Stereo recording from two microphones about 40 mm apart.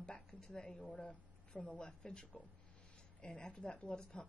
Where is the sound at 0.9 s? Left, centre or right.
Left.